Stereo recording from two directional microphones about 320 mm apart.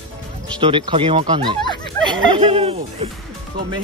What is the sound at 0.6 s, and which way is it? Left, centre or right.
Speech, centre.